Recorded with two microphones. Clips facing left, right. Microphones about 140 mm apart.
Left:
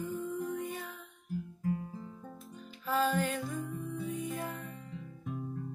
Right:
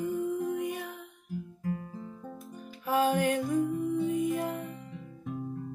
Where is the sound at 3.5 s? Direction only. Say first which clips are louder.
Right 11 dB; 20° right (ahead or behind).